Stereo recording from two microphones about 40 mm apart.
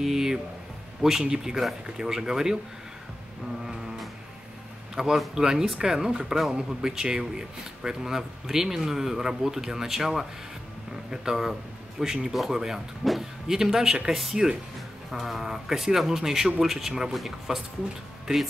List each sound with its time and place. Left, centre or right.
0.0 s speech: centre
5.1 s speech: centre
5.4 s speech: centre